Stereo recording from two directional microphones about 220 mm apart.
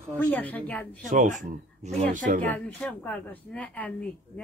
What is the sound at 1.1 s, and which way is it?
Speech, 35° right (ahead or behind).